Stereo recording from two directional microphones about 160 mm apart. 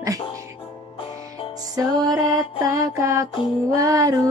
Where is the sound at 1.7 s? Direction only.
20° right (ahead or behind).